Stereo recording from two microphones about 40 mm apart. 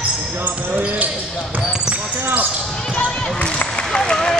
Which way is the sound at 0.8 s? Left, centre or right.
Right.